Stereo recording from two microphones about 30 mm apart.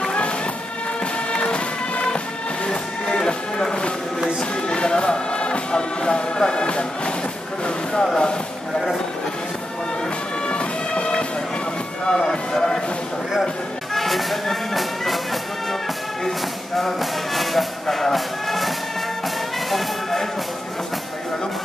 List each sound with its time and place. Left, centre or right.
1.3 s music: left
7.9 s a sound: left
10.4 s bagpipes: left
12.1 s music: left
13.9 s music: centre
16.3 s music: centre
17.0 s music: centre
17.8 s music: centre
18.1 s music: centre
19.7 s music: centre